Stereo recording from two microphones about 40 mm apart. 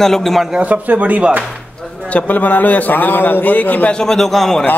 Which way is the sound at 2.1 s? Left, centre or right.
Left.